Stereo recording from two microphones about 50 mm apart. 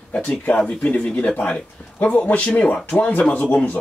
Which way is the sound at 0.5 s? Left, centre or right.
Left.